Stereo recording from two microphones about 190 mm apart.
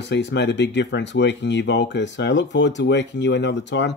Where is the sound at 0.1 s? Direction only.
65° left (ahead or behind).